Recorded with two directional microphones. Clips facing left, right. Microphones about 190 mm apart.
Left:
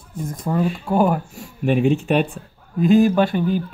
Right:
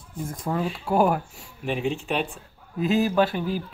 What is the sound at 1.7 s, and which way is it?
Speech, 55° left (ahead or behind).